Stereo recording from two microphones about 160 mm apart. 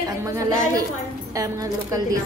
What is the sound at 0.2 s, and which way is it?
A woman's voice, 20° right (ahead or behind).